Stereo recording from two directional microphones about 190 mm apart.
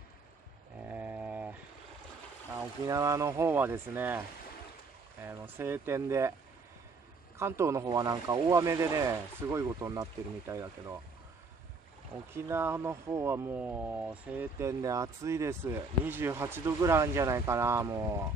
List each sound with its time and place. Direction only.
0.8 s a sound: 10° right (ahead or behind)
2.9 s speech: 15° right (ahead or behind)
5.2 s speech: 10° right (ahead or behind)
7.3 s speech: 15° right (ahead or behind)
12.3 s speech: 15° right (ahead or behind)